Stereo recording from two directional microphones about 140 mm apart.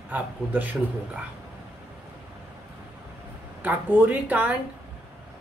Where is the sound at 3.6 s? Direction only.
15° right (ahead or behind).